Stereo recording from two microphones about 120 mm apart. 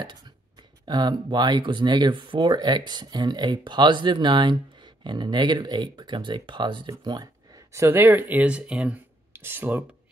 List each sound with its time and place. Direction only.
0.8 s speech: 35° right (ahead or behind); by 9.8 s 15° right (ahead or behind)